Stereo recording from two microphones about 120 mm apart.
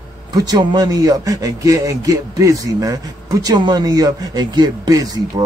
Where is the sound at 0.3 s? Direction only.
35° right (ahead or behind).